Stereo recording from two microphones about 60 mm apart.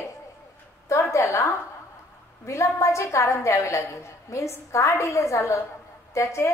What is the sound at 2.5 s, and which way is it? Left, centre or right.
A woman's voice, left.